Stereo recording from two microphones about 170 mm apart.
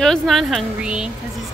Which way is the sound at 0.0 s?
Centre (ahead or behind).